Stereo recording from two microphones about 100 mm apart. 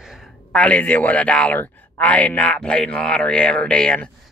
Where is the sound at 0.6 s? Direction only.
15° left (ahead or behind).